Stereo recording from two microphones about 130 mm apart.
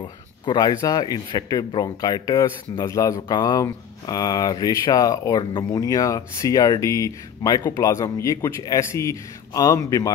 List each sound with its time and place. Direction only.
0.0 s speech: 30° left (ahead or behind)